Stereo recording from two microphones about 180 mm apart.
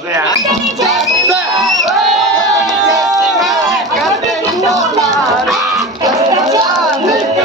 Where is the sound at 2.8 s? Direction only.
20° right (ahead or behind).